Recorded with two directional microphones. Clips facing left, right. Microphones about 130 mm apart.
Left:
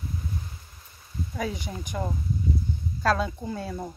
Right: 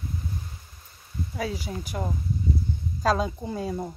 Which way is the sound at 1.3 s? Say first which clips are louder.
Right 1 dB; 5° right (ahead or behind).